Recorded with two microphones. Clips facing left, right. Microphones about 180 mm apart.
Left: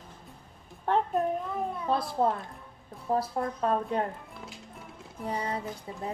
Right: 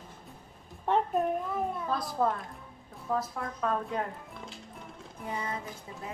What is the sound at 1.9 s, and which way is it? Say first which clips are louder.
A woman's voice: left 5 dB; 30° left (ahead or behind).